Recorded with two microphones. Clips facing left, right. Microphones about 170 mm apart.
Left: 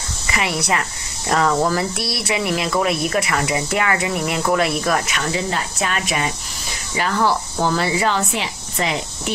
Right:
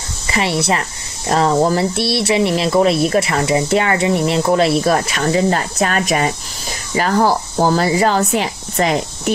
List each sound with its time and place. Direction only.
0.3 s speech: 30° right (ahead or behind)